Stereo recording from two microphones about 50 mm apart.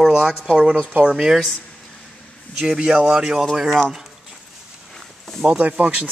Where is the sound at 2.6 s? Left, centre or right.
Centre.